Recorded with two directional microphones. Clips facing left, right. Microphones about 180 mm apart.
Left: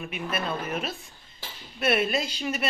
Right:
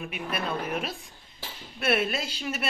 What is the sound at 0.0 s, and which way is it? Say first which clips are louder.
Speech: left 1 dB; 5° right (ahead or behind).